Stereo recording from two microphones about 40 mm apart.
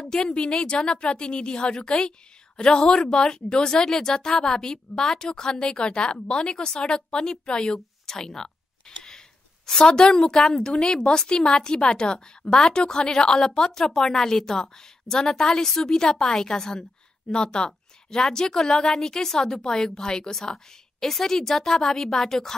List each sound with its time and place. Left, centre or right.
0.2 s a woman's voice: left
0.5 s a woman's voice: centre
8.8 s a sound: centre
9.8 s a woman's voice: centre